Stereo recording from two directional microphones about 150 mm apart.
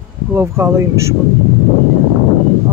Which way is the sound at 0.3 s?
20° right (ahead or behind).